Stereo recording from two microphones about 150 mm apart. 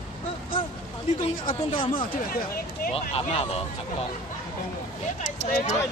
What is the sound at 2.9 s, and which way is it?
Speech, 40° left (ahead or behind).